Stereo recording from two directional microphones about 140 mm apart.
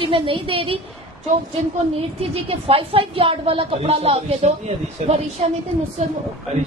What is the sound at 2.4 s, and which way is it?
Speech, 40° right (ahead or behind).